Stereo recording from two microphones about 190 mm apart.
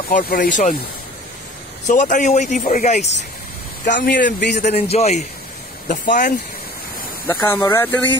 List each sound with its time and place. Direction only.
0.1 s speech: 50° left (ahead or behind)
1.9 s a man's voice: 40° left (ahead or behind)
4.2 s a man's voice: 60° left (ahead or behind)
4.6 s a man's voice: 35° left (ahead or behind)
7.2 s speech: 15° left (ahead or behind)